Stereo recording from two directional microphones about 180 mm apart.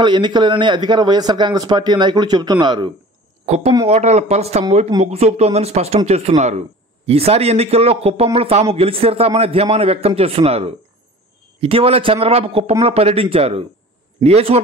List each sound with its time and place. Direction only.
0.0 s a man's voice: 25° right (ahead or behind)
3.4 s a woman's voice: 35° right (ahead or behind)